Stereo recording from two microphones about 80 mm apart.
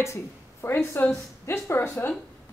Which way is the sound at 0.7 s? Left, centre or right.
Left.